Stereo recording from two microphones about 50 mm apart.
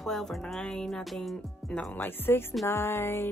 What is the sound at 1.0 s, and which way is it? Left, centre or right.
Speech, centre.